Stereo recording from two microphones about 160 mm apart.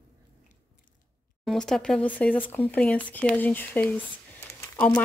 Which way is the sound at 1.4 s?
5° left (ahead or behind).